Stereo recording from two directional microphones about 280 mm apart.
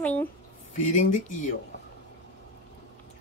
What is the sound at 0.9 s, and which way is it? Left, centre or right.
Speech, left.